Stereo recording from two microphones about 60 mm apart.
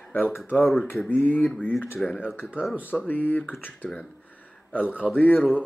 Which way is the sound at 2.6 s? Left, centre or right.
Right.